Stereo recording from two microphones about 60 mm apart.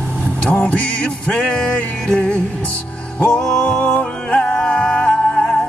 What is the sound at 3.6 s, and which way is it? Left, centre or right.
Music, left.